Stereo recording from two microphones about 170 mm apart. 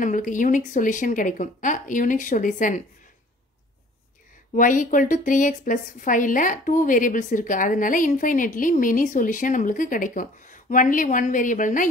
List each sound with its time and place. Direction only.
0.0 s a woman's voice: 50° left (ahead or behind)
4.6 s a woman's voice: 50° left (ahead or behind)